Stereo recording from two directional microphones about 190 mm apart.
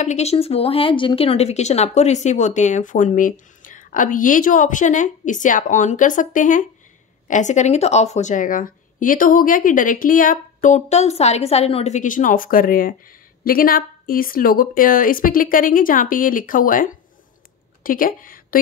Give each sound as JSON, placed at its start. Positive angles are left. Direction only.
{"t": 0.0, "sound": "a woman's voice", "side_deg": 35}